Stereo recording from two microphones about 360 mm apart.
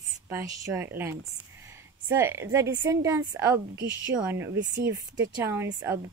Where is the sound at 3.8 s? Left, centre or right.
Right.